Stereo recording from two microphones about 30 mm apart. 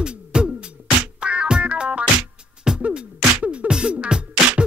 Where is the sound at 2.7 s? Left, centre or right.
Right.